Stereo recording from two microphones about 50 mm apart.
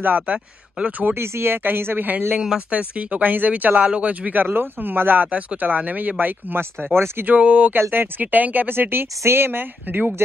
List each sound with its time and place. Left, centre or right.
0.0 s speech: right
1.1 s speech: right
2.3 s speech: centre; by 6.6 s right
6.6 s speech: right
7.3 s speech: right
7.9 s speech: right